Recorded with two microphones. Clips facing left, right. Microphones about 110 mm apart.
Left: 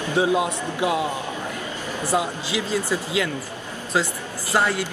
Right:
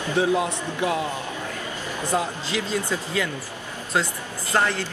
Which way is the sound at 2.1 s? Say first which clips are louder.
Left 2 dB; 15° left (ahead or behind).